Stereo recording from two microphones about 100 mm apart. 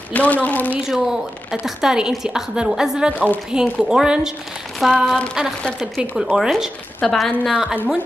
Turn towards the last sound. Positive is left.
turn(degrees=-10)  # may be behind; listen again after turning